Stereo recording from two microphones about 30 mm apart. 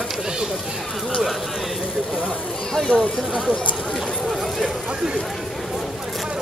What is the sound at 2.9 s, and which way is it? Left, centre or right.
Speech, left.